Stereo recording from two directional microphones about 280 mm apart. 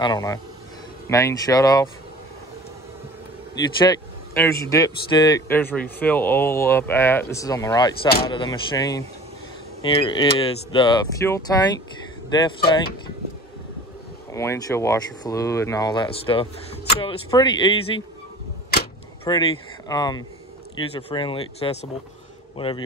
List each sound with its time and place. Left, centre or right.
0.0 s speech: centre
3.8 s speech: centre
14.3 s speech: centre
19.3 s speech: centre